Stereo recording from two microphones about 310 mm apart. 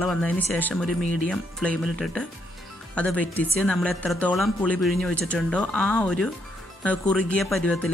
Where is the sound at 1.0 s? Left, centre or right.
Right.